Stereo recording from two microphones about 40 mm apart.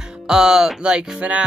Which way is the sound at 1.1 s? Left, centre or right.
Right.